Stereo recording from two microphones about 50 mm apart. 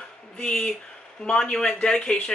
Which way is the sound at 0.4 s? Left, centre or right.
Centre.